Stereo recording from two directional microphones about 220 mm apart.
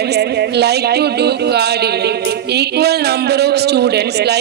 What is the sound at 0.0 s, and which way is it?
Speech, 50° right (ahead or behind).